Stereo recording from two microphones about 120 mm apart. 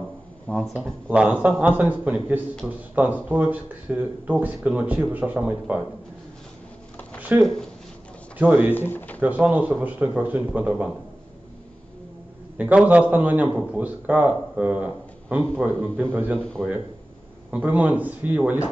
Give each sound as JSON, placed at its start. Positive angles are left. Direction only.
{"t": 0.5, "sound": "speech", "side_deg": 5}
{"t": 1.0, "sound": "speech", "side_deg": -10}
{"t": 7.2, "sound": "a sound", "side_deg": -15}
{"t": 8.4, "sound": "speech", "side_deg": -15}
{"t": 8.7, "sound": "speech", "side_deg": 15}
{"t": 9.2, "sound": "speech", "side_deg": -15}
{"t": 12.5, "sound": "speech", "side_deg": -15}